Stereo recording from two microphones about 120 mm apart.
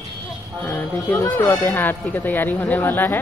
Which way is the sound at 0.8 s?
15° left (ahead or behind).